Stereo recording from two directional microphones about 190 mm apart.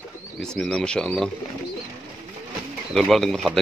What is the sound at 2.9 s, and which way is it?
Speech, centre (ahead or behind).